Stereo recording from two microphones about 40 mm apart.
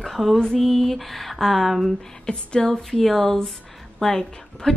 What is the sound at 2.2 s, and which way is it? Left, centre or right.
Speech, centre.